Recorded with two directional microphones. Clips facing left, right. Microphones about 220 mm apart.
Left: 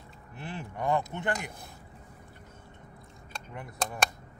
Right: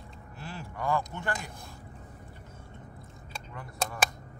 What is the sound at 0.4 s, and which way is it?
Speech, 20° left (ahead or behind).